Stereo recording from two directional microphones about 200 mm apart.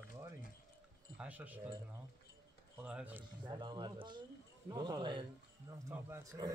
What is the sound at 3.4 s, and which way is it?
Speech, 20° right (ahead or behind).